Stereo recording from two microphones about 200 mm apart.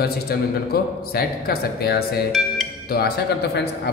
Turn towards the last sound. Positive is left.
turn(degrees=55)  # may be behind; listen again after turning